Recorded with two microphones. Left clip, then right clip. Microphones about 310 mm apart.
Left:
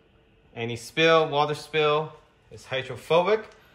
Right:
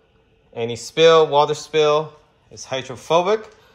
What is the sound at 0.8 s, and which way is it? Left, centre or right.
Speech, centre.